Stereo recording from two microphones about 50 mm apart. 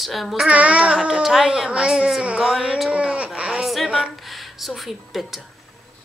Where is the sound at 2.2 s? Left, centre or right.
Right.